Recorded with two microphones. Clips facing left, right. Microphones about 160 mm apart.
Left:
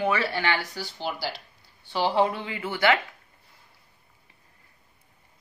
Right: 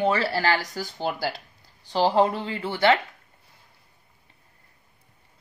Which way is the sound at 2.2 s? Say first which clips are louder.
Right 3 dB; 35° right (ahead or behind).